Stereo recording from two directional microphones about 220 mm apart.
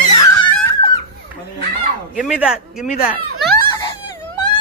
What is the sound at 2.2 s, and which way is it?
Speech, 5° right (ahead or behind).